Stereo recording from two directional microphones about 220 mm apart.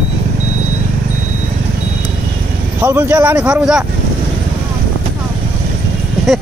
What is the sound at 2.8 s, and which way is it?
Speech, 10° right (ahead or behind).